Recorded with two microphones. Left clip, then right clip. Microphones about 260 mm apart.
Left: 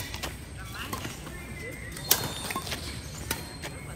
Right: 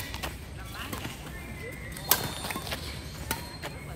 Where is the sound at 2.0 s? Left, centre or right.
Right.